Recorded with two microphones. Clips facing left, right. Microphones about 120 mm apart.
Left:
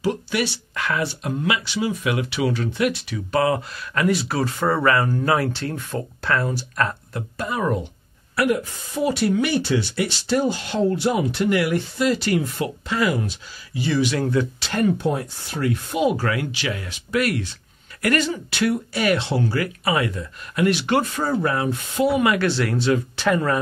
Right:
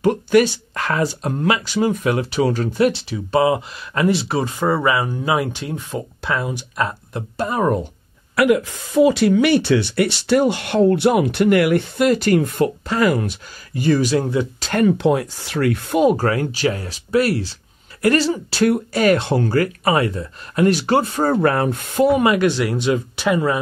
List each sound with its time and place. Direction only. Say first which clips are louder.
0.0 s speech: right 8 dB; 50° right (ahead or behind)
2.9 s speech: right 4 dB; 30° right (ahead or behind)
4.6 s speech: even; 10° right (ahead or behind)
7.3 s speech: right 5 dB; 40° right (ahead or behind)
8.4 s speech: right 5 dB; 90° right; by 14.1 s 45° right (ahead or behind)
14.1 s speech: right 3 dB; 20° right (ahead or behind)
14.8 s speech: right 5 dB; 90° right; by 16.0 s 65° right (ahead or behind)
16.0 s speech: right 5 dB; 45° right (ahead or behind)
18.7 s speech: right 5 dB; 45° right (ahead or behind)
21.3 s speech: right 5 dB; 60° right (ahead or behind)
22.2 s speech: right 3 dB; 20° right (ahead or behind)